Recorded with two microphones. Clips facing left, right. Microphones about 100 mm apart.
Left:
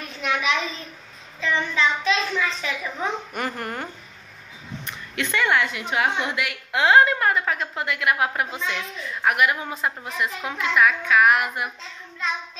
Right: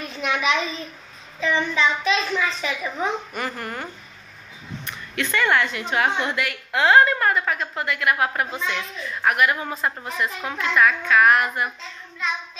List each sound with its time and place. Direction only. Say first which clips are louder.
0.2 s a child's voice: right 1 dB; centre (ahead or behind)
3.3 s speech: left 1 dB; 45° left (ahead or behind)
4.8 s a sound: right 1 dB; 25° left (ahead or behind)
5.3 s a woman's voice: right 1 dB; 10° left (ahead or behind)